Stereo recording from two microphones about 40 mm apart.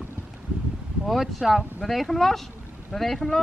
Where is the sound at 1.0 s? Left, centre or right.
Centre.